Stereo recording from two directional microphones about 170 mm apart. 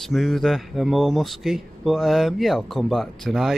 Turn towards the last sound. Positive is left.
turn(degrees=0)  # may be behind; listen again after turning